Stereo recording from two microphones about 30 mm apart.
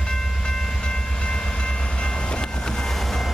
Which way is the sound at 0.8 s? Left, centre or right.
Left.